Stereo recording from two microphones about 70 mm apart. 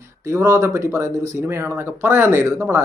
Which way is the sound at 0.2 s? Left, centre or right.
Right.